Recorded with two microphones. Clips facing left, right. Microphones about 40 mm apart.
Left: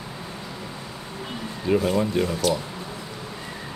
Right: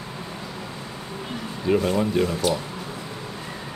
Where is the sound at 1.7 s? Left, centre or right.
Centre.